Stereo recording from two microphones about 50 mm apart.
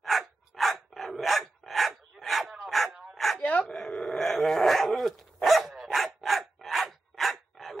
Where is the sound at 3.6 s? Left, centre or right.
Centre.